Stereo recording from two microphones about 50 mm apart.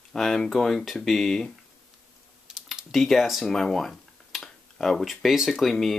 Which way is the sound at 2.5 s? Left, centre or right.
Centre.